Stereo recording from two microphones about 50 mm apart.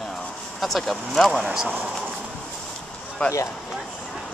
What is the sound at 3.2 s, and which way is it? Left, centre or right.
Speech, left.